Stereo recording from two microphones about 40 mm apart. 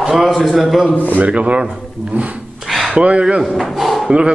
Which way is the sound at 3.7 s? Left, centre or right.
Centre.